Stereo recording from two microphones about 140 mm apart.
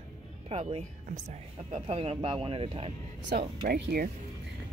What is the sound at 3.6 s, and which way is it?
Speech, 90° right.